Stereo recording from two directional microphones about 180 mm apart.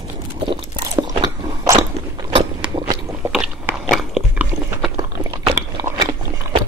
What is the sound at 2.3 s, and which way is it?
Biting, 25° right (ahead or behind).